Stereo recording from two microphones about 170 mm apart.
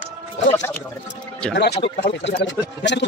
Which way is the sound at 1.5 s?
85° left.